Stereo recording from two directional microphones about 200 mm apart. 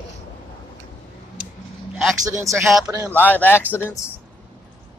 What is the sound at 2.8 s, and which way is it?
Speech, 15° right (ahead or behind).